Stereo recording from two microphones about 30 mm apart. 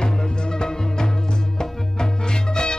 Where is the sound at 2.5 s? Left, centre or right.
Left.